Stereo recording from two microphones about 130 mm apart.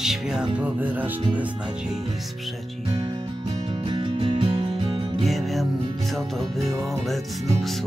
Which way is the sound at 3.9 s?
35° right (ahead or behind).